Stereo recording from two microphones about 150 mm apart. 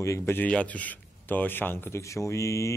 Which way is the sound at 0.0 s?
15° left (ahead or behind).